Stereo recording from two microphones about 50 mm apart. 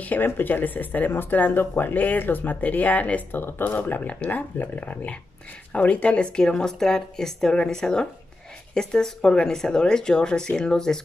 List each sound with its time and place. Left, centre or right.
0.0 s speech: left
3.3 s speech: left; by 11.0 s centre